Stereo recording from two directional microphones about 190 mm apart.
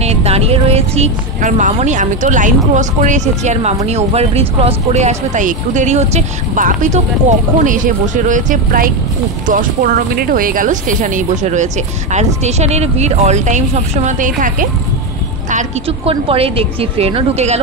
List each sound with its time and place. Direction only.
0.0 s speech: 35° right (ahead or behind)
16.1 s a woman's voice: 30° right (ahead or behind)